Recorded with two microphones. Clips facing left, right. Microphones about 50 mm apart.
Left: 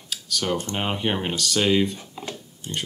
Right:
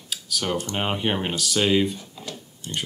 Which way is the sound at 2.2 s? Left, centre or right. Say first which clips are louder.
Left 3 dB; left.